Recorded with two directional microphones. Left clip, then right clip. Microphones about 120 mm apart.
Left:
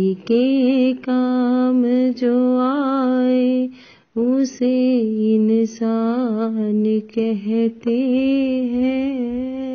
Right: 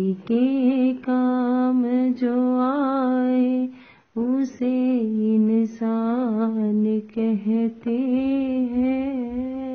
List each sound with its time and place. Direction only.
0.0 s mantra: 30° left (ahead or behind)